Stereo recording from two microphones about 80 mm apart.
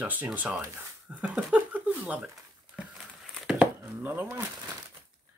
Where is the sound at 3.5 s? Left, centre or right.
Right.